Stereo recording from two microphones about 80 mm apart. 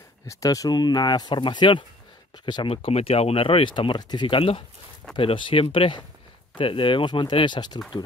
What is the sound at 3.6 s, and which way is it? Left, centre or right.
Speech, left.